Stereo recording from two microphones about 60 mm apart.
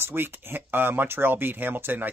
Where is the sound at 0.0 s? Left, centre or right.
Right.